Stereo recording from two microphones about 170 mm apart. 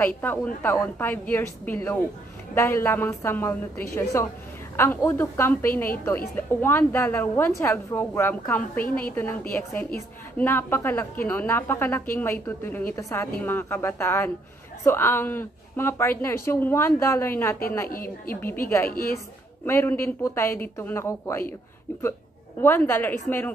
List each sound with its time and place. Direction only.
0.0 s a woman's voice: 10° left (ahead or behind)
17.8 s a woman's voice: 55° left (ahead or behind)
18.3 s a woman's voice: 10° left (ahead or behind)
22.6 s a woman's voice: 15° left (ahead or behind)